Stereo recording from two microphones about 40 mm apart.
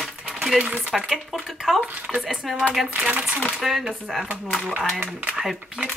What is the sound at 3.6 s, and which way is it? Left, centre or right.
Speech, centre.